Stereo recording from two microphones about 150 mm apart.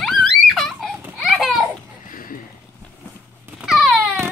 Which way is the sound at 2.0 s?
65° left (ahead or behind).